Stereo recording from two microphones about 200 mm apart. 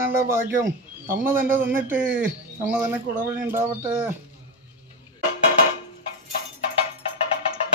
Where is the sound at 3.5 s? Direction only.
10° right (ahead or behind).